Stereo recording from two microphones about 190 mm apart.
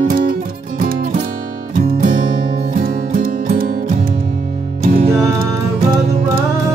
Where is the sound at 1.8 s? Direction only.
50° right (ahead or behind).